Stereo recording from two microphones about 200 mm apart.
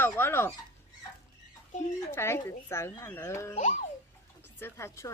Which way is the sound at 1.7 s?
35° left (ahead or behind).